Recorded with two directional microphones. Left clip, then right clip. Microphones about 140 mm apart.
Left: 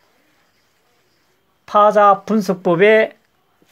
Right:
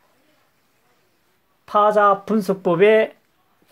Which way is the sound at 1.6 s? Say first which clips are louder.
Left 4 dB; 15° right (ahead or behind).